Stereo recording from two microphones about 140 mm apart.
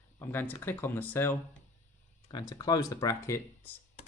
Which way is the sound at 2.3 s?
30° left (ahead or behind).